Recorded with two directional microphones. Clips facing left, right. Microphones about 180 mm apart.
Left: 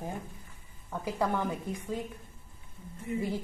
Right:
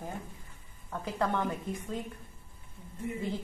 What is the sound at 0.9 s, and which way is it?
Speech, 10° left (ahead or behind).